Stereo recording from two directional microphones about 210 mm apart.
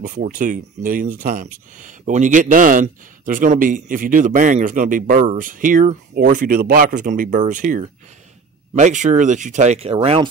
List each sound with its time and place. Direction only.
0.0 s speech: 40° right (ahead or behind)